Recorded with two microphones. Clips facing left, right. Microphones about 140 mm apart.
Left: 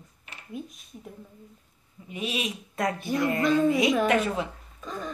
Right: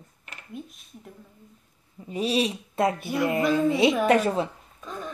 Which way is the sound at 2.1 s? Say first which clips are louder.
Right 7 dB; 35° right (ahead or behind).